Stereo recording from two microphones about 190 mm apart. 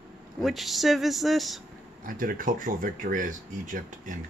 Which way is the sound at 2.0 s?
50° right (ahead or behind).